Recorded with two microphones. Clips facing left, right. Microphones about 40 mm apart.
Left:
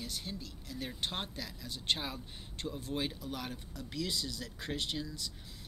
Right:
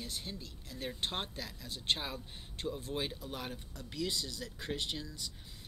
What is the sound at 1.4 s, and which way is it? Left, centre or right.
Speech, right.